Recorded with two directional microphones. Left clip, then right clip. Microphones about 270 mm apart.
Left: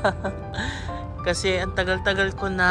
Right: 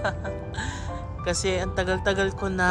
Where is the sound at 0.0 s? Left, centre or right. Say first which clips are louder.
Left 5 dB; centre.